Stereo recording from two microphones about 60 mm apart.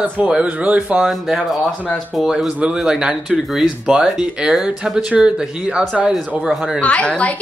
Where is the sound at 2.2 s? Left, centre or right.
Centre.